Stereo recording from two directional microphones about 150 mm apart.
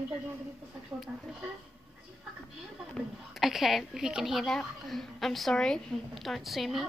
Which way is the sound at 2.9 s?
Centre (ahead or behind).